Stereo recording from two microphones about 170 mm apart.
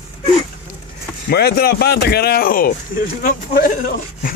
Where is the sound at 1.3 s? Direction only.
70° left (ahead or behind).